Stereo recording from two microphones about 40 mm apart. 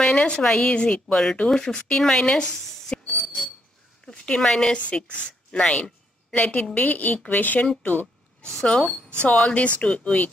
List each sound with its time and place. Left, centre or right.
0.0 s a woman's voice: centre
2.9 s a sound: left
4.5 s a woman's voice: centre; by 8.1 s left
8.6 s a woman's voice: left